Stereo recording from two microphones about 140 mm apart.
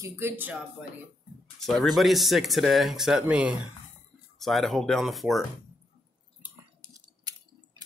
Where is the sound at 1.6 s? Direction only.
Centre (ahead or behind).